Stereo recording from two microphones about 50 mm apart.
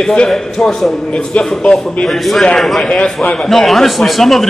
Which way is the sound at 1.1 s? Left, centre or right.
Centre.